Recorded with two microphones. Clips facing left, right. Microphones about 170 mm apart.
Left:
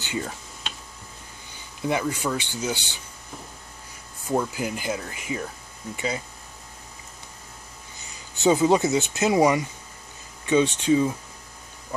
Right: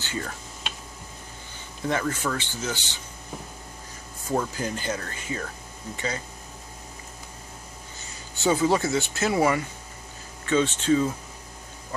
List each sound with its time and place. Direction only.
0.0 s speech: 15° left (ahead or behind)
1.8 s speech: 15° left (ahead or behind)
4.3 s speech: 10° left (ahead or behind)
8.1 s speech: 15° left (ahead or behind)